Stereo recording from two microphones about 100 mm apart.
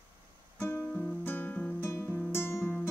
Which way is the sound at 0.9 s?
10° left (ahead or behind).